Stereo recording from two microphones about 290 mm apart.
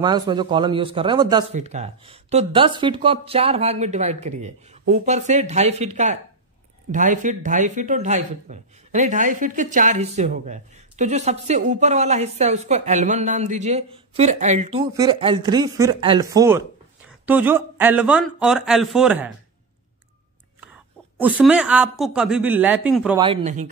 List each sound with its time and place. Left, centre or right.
0.0 s speech: centre
21.2 s speech: centre
23.1 s speech: centre